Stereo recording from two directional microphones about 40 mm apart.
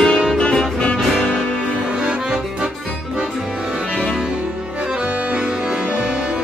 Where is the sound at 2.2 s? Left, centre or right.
Centre.